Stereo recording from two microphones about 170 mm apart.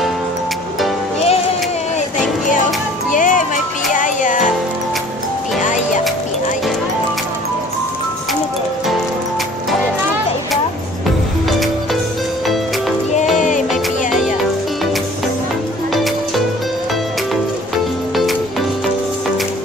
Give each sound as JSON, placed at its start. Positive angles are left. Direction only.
{"t": 2.0, "sound": "music", "side_deg": 45}
{"t": 5.6, "sound": "music", "side_deg": 45}
{"t": 11.4, "sound": "music", "side_deg": 0}
{"t": 13.1, "sound": "music", "side_deg": 45}
{"t": 13.7, "sound": "music", "side_deg": 0}